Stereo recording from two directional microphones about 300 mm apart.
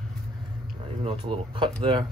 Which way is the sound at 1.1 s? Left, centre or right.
Centre.